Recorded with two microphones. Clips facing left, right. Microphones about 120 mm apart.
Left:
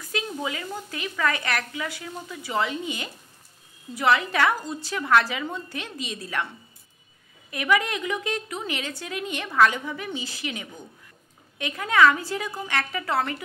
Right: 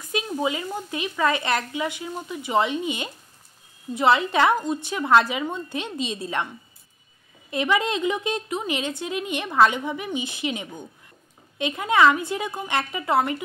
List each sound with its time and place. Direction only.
0.1 s a woman's voice: 20° right (ahead or behind)
7.5 s a woman's voice: 25° right (ahead or behind)